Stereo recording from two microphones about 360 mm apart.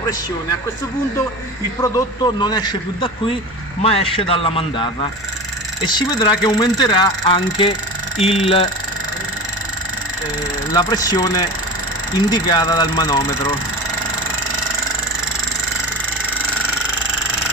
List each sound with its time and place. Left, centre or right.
1.8 s speech: centre
5.9 s speech: centre
10.7 s speech: centre